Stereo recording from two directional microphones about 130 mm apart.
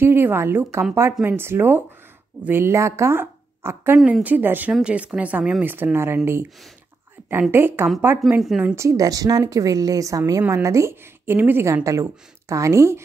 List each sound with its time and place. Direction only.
0.0 s a woman's voice: 20° right (ahead or behind)
7.2 s a sound: 15° right (ahead or behind)
7.5 s speech: 15° right (ahead or behind)
8.4 s a woman's voice: 5° right (ahead or behind)
8.7 s a woman's voice: 25° right (ahead or behind)